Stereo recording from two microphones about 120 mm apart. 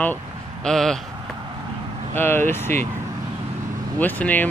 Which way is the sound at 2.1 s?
20° left (ahead or behind).